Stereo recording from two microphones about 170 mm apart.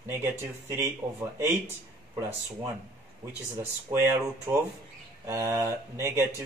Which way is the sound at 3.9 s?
15° right (ahead or behind).